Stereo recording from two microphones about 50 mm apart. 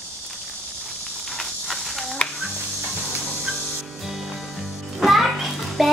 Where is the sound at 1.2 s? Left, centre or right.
Centre.